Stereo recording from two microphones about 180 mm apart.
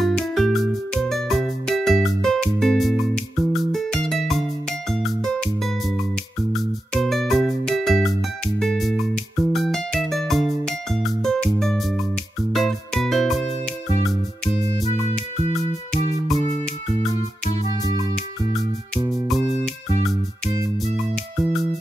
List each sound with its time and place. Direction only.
0.0 s music: centre (ahead or behind)
6.5 s music: centre (ahead or behind)
14.9 s music: 40° left (ahead or behind)
17.8 s music: 20° right (ahead or behind)